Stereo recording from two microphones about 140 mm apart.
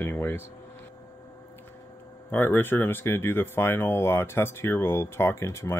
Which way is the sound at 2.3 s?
15° left (ahead or behind).